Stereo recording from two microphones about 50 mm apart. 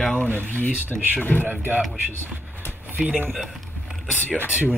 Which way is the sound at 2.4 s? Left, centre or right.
Right.